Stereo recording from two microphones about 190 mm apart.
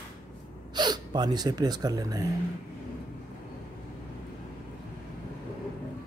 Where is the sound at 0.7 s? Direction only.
25° right (ahead or behind).